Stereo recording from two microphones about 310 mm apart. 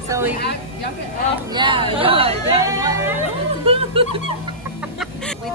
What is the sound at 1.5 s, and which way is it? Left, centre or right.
Speech, centre.